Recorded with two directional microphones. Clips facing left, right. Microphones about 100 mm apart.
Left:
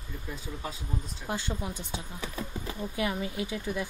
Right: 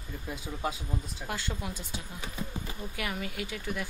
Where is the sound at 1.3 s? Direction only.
20° left (ahead or behind).